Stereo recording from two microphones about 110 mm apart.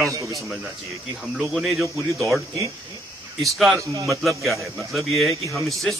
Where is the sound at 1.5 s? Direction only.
Centre (ahead or behind).